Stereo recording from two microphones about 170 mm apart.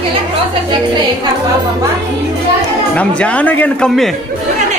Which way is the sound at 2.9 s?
5° left (ahead or behind).